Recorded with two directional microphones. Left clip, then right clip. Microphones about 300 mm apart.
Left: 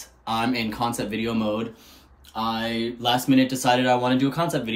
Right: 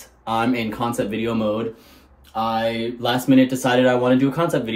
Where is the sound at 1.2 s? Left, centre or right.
Centre.